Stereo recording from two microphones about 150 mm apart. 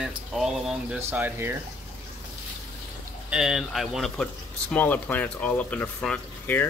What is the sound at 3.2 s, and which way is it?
Speech, 5° right (ahead or behind).